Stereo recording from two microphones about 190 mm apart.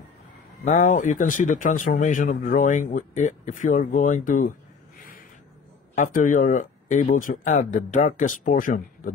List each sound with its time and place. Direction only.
0.7 s speech: 40° left (ahead or behind)
5.9 s speech: 45° left (ahead or behind)